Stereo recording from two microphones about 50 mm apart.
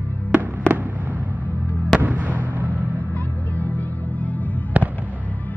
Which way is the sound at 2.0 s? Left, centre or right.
Right.